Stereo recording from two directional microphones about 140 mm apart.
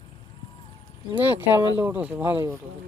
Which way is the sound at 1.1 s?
10° right (ahead or behind).